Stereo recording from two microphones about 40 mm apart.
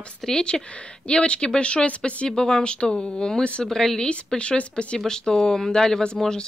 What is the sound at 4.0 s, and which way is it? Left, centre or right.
Speech, left.